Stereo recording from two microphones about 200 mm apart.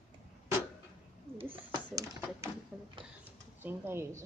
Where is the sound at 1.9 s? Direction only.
20° right (ahead or behind).